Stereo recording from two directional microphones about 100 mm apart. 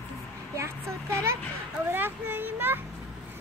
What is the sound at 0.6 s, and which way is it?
Speech, 30° right (ahead or behind).